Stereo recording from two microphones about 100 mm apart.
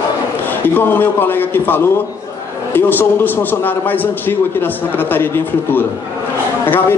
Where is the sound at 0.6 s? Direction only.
20° left (ahead or behind).